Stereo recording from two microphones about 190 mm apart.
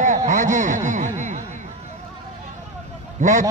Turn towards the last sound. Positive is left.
turn(degrees=-40)  # may be behind; listen again after turning